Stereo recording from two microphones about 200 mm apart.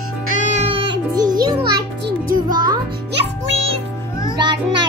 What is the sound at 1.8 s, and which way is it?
Music, 55° right (ahead or behind).